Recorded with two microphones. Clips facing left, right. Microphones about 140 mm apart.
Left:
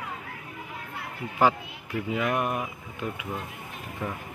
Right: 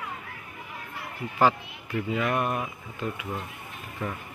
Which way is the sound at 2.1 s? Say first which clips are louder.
Even; 15° left (ahead or behind).